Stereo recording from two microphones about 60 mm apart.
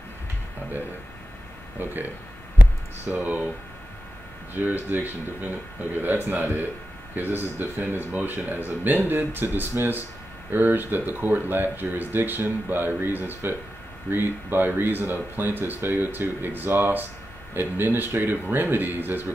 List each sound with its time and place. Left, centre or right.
1.8 s speech: right
3.1 s speech: right
4.6 s speech: right